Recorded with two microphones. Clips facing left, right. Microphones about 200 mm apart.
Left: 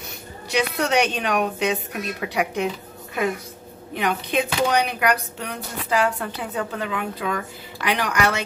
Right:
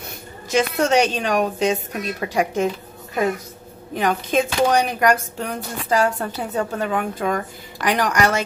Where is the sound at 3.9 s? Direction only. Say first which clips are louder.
Right 3 dB; 40° right (ahead or behind).